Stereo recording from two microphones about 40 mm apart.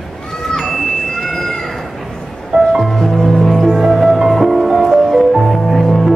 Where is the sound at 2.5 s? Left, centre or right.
Centre.